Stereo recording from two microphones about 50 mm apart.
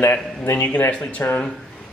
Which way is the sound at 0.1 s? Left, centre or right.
Left.